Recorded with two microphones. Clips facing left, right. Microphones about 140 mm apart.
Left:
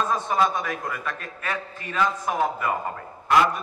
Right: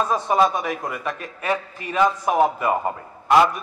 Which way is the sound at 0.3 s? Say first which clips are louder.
Right 6 dB; 15° right (ahead or behind).